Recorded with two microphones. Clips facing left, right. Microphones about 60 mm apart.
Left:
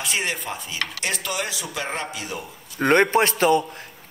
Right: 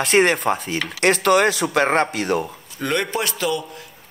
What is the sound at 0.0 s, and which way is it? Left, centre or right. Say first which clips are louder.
Dishes: right 10 dB; right.